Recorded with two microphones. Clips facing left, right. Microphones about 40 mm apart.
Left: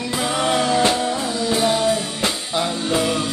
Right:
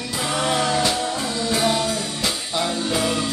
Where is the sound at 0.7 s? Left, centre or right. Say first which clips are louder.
Left 4 dB; left.